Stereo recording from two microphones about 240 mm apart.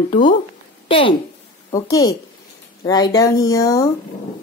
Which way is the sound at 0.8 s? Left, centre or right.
Left.